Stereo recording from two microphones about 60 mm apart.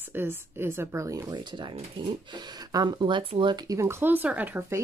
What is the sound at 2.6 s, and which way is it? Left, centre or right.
Speech, right.